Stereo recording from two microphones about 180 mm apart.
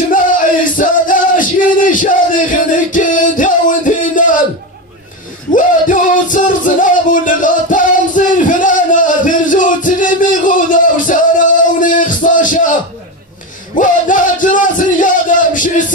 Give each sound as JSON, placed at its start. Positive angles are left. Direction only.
{"t": 0.1, "sound": "music", "side_deg": 50}
{"t": 5.5, "sound": "music", "side_deg": 45}
{"t": 13.7, "sound": "music", "side_deg": 45}